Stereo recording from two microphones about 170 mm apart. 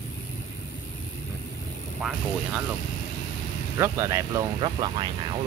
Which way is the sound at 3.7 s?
15° right (ahead or behind).